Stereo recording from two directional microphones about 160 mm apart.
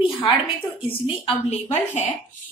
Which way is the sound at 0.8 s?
35° left (ahead or behind).